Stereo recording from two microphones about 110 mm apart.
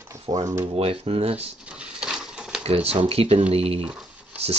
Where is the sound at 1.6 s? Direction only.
10° right (ahead or behind).